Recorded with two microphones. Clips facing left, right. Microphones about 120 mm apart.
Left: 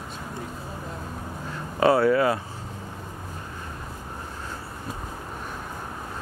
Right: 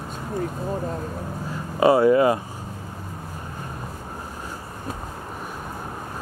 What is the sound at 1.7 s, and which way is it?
Speech, 15° right (ahead or behind).